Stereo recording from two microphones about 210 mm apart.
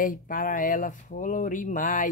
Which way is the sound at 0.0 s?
40° left (ahead or behind).